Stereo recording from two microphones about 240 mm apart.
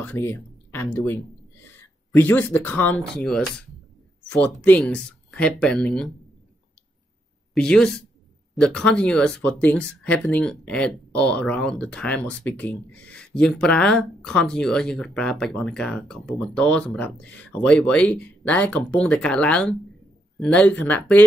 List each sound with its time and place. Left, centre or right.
0.0 s speech: centre
0.8 s a sound: centre
2.1 s speech: centre
7.5 s speech: centre